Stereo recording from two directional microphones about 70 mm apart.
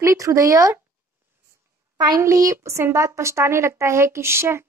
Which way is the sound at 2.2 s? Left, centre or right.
Right.